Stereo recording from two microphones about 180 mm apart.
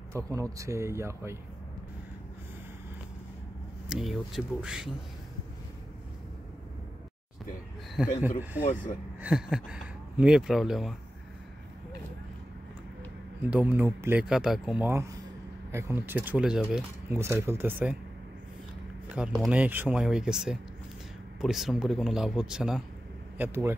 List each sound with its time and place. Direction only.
0.1 s speech: 15° right (ahead or behind)
3.9 s speech: centre (ahead or behind)
8.6 s speech: 10° right (ahead or behind)
13.4 s speech: 10° right (ahead or behind)
19.1 s speech: 5° right (ahead or behind)